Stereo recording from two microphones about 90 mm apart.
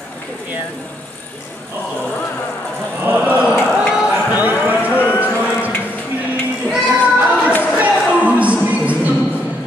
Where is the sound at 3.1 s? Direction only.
20° right (ahead or behind).